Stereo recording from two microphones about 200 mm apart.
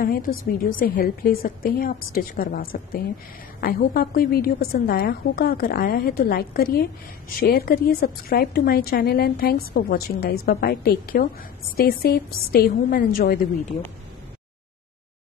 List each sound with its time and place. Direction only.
0.0 s a woman's voice: 50° left (ahead or behind)